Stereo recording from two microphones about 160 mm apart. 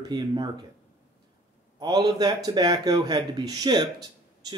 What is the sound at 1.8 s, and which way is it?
Speech, 25° right (ahead or behind).